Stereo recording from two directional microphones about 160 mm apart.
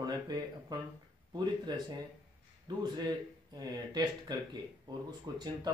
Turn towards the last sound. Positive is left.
turn(degrees=-25)  # may be behind; listen again after turning